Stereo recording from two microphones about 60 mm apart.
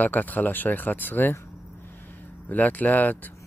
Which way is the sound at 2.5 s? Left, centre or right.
Left.